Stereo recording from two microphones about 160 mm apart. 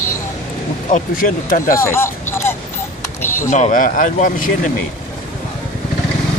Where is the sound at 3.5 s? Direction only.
50° left (ahead or behind).